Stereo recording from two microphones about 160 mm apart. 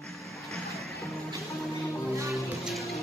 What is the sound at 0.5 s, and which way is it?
Music, centre (ahead or behind).